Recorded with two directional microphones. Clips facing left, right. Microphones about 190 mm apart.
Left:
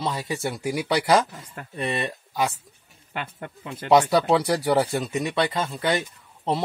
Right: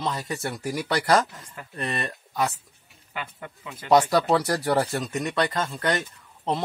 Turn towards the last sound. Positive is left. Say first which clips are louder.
# left 2 dB
turn(degrees=5)  # may be behind; listen again after turning